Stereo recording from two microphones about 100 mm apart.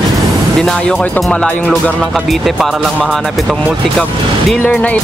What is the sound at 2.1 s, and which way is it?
Speech, centre (ahead or behind).